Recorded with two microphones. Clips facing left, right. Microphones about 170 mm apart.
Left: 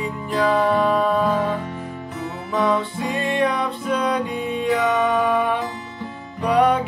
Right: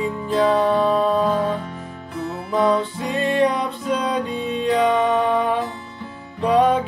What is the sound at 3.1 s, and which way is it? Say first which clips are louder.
Music: right 3 dB; 15° left (ahead or behind).